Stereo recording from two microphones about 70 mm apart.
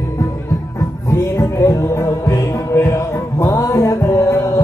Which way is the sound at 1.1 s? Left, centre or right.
Left.